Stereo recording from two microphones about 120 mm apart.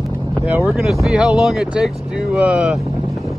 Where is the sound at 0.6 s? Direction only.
Centre (ahead or behind).